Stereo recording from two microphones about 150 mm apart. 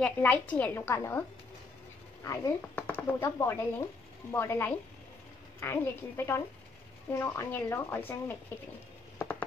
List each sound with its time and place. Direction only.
0.0 s speech: 10° left (ahead or behind)
2.2 s speech: 20° left (ahead or behind)